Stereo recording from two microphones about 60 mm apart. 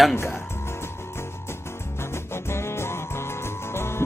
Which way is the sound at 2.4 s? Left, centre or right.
Left.